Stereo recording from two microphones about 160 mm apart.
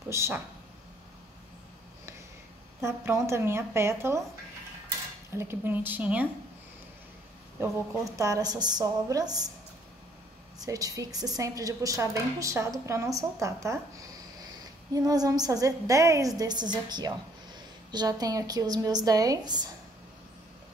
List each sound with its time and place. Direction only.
0.1 s a woman's voice: 15° right (ahead or behind)
2.8 s a woman's voice: 15° right (ahead or behind)
5.3 s a woman's voice: 15° right (ahead or behind)
7.5 s a woman's voice: 20° right (ahead or behind)
10.6 s a woman's voice: 20° right (ahead or behind)
15.0 s a woman's voice: 25° right (ahead or behind)